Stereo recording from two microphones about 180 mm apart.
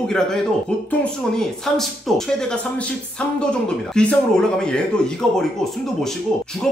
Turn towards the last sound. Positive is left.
turn(degrees=0)  # may be behind; listen again after turning